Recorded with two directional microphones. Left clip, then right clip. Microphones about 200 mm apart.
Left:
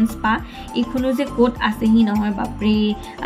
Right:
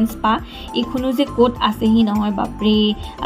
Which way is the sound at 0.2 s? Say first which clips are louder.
Right 2 dB; 15° right (ahead or behind).